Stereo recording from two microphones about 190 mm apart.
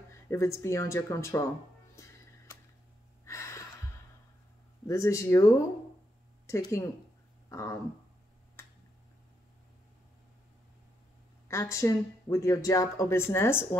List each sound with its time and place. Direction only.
0.3 s speech: 15° left (ahead or behind)
3.3 s a sound: 15° left (ahead or behind)
4.8 s speech: 15° left (ahead or behind)
6.4 s speech: 15° left (ahead or behind)
11.4 s speech: 15° left (ahead or behind)